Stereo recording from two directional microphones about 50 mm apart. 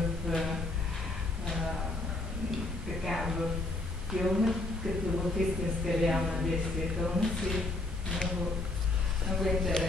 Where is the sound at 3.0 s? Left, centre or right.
Centre.